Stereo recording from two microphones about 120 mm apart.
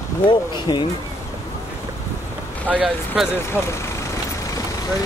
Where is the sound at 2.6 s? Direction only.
10° right (ahead or behind).